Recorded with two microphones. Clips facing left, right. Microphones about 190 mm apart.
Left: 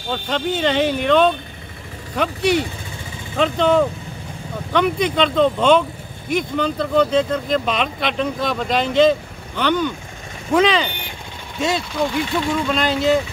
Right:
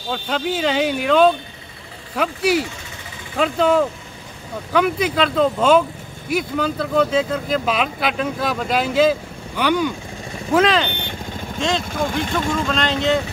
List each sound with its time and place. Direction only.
0.1 s speech: 5° right (ahead or behind)
11.9 s speech: 45° right (ahead or behind)
12.6 s speech: 5° left (ahead or behind)